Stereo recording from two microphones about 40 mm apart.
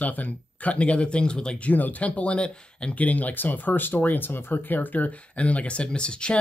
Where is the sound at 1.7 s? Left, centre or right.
Left.